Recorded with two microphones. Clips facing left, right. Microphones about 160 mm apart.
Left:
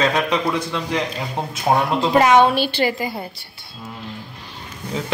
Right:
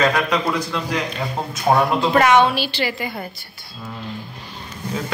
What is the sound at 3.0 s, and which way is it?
Speech, 35° left (ahead or behind).